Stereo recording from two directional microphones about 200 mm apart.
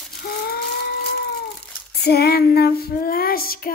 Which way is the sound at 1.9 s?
50° left (ahead or behind).